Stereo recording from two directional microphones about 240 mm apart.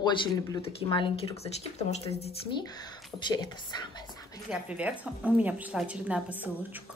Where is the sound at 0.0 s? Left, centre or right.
Centre.